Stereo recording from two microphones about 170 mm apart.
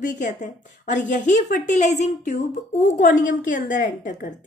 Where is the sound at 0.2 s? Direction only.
45° left (ahead or behind).